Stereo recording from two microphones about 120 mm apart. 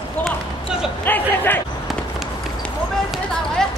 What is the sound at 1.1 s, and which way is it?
Speech, 15° left (ahead or behind).